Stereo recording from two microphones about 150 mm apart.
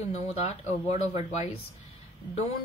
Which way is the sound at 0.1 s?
45° left (ahead or behind).